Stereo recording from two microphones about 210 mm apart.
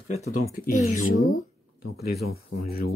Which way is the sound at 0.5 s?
40° left (ahead or behind).